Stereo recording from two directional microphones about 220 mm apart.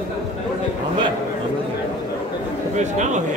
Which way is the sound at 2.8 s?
35° right (ahead or behind).